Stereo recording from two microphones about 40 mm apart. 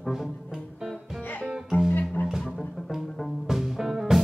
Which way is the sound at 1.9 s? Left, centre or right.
Left.